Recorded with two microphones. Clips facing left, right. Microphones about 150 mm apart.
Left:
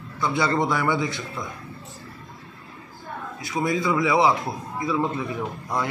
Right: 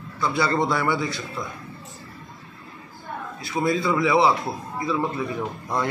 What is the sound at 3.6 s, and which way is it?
A man's voice, 15° left (ahead or behind).